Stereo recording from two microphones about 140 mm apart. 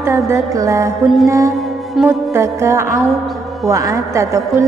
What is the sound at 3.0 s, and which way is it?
Speech, centre (ahead or behind).